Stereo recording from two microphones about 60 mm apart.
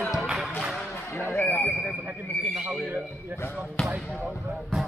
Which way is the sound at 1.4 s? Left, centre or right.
Left.